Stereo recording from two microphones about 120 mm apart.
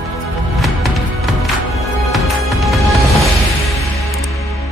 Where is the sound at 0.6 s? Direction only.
Centre (ahead or behind).